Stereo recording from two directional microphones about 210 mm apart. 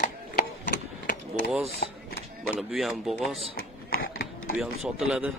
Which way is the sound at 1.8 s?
50° left (ahead or behind).